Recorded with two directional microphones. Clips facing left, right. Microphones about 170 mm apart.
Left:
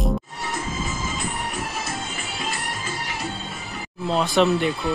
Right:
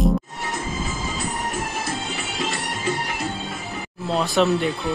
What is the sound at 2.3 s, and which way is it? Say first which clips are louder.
Music: right 2 dB; 70° right (ahead or behind).